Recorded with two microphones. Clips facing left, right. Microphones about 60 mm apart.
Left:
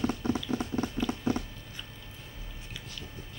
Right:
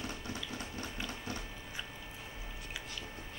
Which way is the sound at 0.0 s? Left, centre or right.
Left.